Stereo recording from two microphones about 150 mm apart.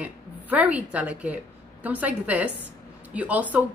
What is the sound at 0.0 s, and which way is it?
A woman's voice, 10° right (ahead or behind).